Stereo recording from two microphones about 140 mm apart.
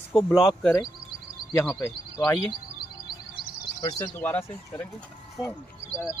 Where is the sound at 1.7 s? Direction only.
25° left (ahead or behind).